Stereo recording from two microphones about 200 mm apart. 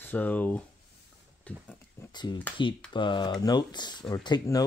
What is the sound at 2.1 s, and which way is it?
Speech, 20° left (ahead or behind).